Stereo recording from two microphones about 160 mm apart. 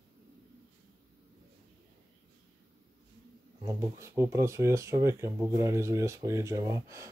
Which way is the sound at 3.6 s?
20° right (ahead or behind).